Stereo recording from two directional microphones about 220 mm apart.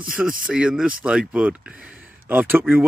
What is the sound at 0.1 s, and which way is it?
Speech, 5° right (ahead or behind).